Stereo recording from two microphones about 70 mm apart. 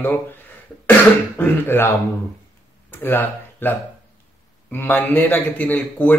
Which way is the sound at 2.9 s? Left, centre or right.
Left.